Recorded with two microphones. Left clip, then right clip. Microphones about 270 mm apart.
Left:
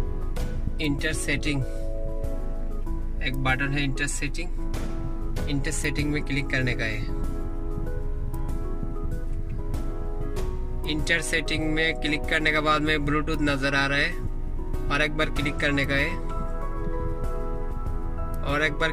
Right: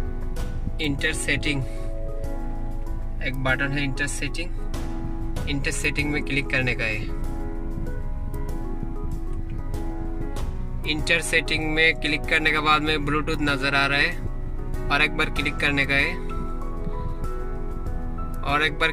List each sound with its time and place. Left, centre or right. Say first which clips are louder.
0.7 s speech: right 2 dB; centre
3.5 s speech: right 2 dB; centre
5.5 s speech: right 4 dB; centre
10.9 s speech: right 3 dB; centre
18.4 s speech: right 3 dB; centre